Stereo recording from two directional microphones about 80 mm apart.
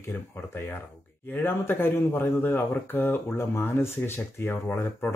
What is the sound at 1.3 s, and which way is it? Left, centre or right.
Speech, left.